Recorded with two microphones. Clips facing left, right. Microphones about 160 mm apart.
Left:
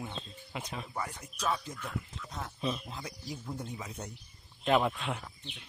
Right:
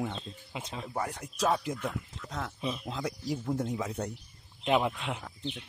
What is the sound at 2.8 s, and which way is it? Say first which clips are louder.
Speech: right 8 dB; 75° right (ahead or behind).